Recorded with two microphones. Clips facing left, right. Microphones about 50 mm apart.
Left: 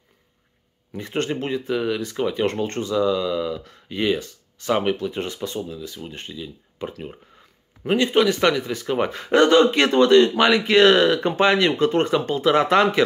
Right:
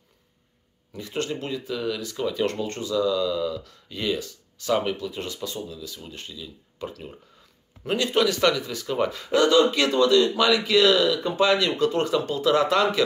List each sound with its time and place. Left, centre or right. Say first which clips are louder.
0.9 s speech: left 4 dB; left